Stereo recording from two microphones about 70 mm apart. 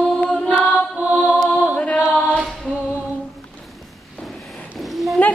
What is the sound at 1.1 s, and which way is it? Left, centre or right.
Music, right.